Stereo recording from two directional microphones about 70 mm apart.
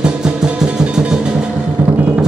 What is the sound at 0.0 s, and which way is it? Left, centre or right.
Music, centre.